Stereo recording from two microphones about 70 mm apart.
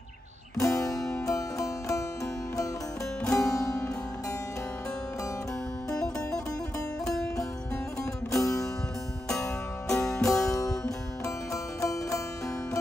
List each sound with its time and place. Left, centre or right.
0.6 s music: left
3.3 s music: left
5.9 s music: centre
8.3 s music: left
9.3 s music: centre
10.2 s music: left